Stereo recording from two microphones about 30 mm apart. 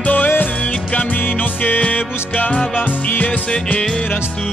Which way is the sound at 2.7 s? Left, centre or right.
Left.